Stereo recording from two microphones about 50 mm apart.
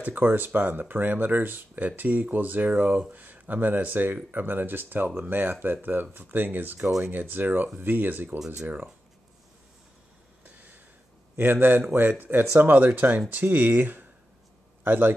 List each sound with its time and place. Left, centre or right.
0.0 s speech: right
10.4 s a sound: right
11.3 s speech: right